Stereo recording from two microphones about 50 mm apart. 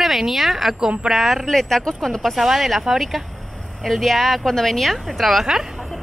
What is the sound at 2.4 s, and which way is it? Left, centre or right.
A woman's voice, centre.